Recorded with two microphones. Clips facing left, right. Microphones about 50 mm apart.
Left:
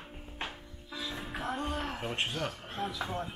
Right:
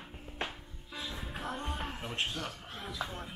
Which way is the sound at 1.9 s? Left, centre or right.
Left.